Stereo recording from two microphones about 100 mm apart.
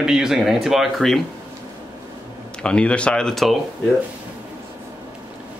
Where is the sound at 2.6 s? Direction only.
10° left (ahead or behind).